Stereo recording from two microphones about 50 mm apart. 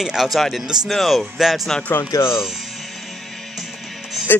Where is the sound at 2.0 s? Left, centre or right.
Left.